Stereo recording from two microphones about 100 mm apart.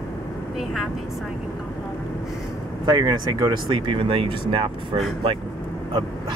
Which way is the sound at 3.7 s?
65° right (ahead or behind).